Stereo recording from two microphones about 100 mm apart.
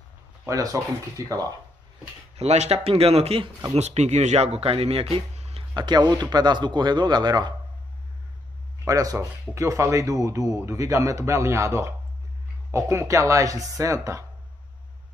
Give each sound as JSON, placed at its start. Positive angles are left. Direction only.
{"t": 0.5, "sound": "speech", "side_deg": -35}
{"t": 2.3, "sound": "speech", "side_deg": -90}
{"t": 5.1, "sound": "a sound", "side_deg": -75}
{"t": 5.8, "sound": "speech", "side_deg": -45}
{"t": 8.8, "sound": "speech", "side_deg": -35}